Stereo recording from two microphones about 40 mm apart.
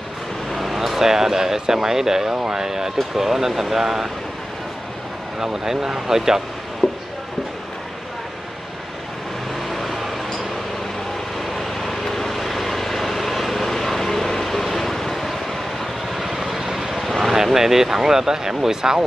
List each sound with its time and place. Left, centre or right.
0.5 s a sound: centre
0.7 s speech: centre
5.4 s speech: centre
6.8 s a sound: centre
9.7 s vehicle: centre
11.5 s vehicle: centre
17.4 s speech: centre